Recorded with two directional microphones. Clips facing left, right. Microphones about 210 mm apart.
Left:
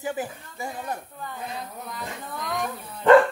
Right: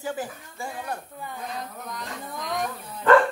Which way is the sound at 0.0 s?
20° left (ahead or behind).